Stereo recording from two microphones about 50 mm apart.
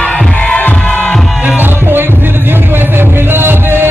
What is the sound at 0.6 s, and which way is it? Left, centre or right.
Music, left.